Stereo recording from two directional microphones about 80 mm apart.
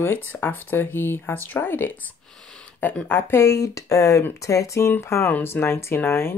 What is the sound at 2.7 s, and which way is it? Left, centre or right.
Speech, left.